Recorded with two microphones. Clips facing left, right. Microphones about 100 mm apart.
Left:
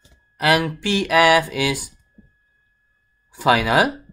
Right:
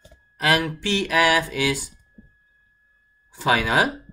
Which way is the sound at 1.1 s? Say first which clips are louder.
Left 5 dB; 70° left (ahead or behind).